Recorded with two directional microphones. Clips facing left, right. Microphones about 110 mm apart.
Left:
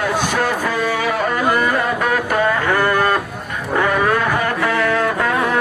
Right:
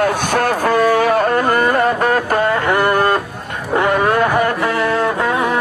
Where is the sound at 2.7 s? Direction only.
20° right (ahead or behind).